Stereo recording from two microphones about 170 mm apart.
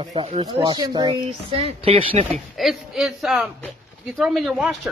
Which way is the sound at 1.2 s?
40° right (ahead or behind).